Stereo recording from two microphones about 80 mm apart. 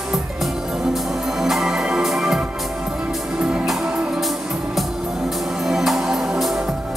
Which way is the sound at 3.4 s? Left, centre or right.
Centre.